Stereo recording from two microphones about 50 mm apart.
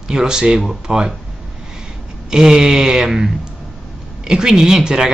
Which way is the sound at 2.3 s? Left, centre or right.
Centre.